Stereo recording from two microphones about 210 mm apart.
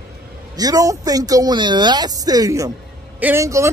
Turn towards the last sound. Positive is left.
turn(degrees=-15)  # may be behind; listen again after turning